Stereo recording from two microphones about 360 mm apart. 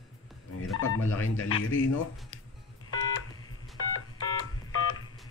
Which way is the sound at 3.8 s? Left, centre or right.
Left.